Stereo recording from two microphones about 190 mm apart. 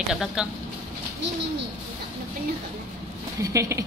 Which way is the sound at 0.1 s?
5° right (ahead or behind).